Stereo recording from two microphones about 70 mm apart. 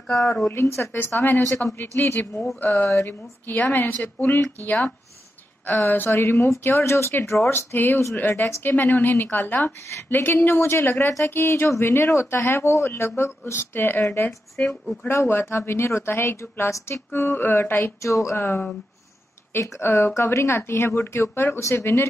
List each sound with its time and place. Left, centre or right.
0.5 s a woman's voice: left
18.0 s a woman's voice: left